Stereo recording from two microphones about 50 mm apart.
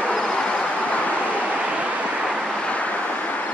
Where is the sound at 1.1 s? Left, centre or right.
Left.